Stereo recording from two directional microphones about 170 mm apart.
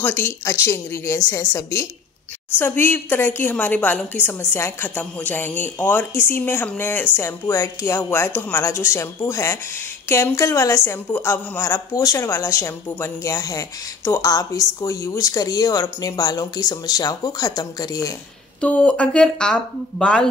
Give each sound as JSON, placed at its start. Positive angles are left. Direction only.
{"t": 0.0, "sound": "a woman's voice", "side_deg": 10}
{"t": 18.6, "sound": "speech", "side_deg": 5}